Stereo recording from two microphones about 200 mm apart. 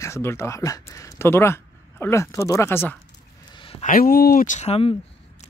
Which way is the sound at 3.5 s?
30° left (ahead or behind).